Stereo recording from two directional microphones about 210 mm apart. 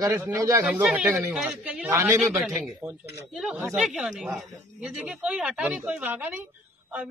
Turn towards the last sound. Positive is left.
turn(degrees=-10)  # may be behind; listen again after turning